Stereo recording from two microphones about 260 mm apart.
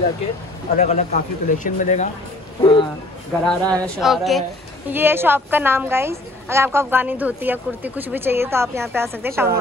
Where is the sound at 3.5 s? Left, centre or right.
Centre.